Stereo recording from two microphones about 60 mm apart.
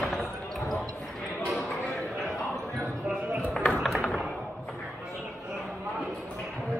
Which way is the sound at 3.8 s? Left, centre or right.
Centre.